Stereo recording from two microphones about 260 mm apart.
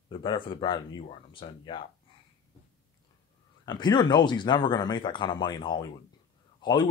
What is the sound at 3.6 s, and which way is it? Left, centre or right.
Speech, centre.